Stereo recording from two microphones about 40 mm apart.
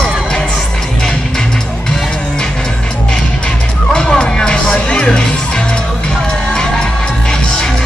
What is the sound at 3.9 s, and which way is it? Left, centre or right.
Music, left.